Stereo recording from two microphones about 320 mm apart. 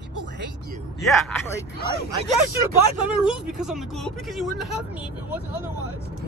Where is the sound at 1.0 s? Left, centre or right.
Centre.